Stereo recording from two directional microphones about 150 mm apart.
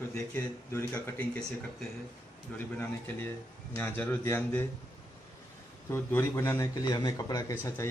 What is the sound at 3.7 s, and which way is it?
Speech, 15° left (ahead or behind).